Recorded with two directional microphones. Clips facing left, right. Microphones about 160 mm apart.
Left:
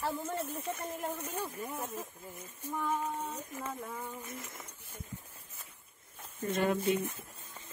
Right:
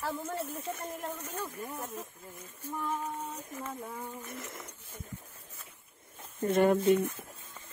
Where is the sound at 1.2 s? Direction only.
15° left (ahead or behind).